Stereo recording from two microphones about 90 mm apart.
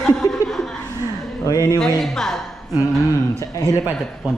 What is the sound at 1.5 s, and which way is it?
Speech, 40° left (ahead or behind).